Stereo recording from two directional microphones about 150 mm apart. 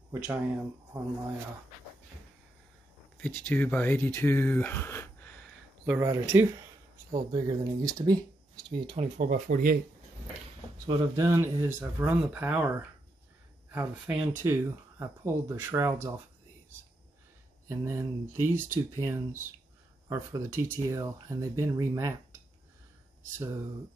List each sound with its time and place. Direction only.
0.1 s speech: 15° right (ahead or behind)
0.9 s speech: 25° right (ahead or behind)
3.2 s speech: 10° left (ahead or behind)
5.9 s speech: 20° right (ahead or behind)
8.9 s speech: 55° right (ahead or behind); by 9.8 s 75° right (ahead or behind)
10.9 s speech: 30° right (ahead or behind)
17.6 s speech: 20° right (ahead or behind)